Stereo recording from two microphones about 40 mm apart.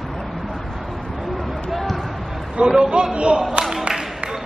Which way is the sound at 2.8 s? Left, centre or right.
Right.